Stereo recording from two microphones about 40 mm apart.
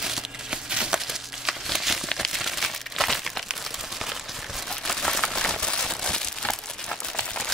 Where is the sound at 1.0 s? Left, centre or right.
Centre.